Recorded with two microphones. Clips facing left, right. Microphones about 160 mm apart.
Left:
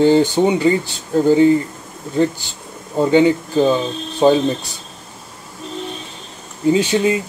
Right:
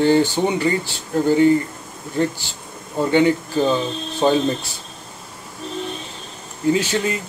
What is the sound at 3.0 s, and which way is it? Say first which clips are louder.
Speech: left 3 dB; 20° left (ahead or behind).